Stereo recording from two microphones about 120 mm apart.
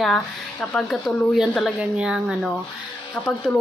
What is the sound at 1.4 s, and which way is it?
A woman's voice, centre (ahead or behind).